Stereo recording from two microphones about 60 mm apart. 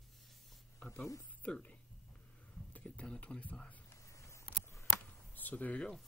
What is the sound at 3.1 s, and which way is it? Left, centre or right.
Speech, left.